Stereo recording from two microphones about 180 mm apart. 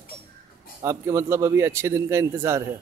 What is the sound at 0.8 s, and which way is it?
A man's voice, 15° right (ahead or behind).